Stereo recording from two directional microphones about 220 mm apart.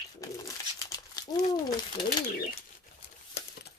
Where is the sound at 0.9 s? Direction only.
15° left (ahead or behind).